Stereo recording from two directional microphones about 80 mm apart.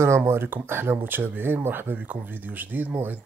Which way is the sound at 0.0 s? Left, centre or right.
Right.